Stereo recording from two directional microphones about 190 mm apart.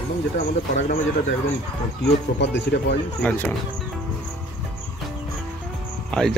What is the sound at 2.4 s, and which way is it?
Speech, 65° left (ahead or behind).